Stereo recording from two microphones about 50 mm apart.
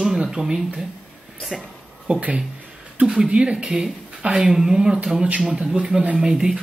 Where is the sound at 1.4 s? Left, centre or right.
Centre.